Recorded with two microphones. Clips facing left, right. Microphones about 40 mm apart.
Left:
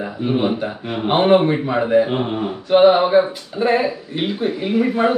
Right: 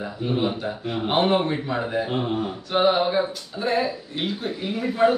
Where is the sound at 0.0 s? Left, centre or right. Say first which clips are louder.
Left 5 dB; left.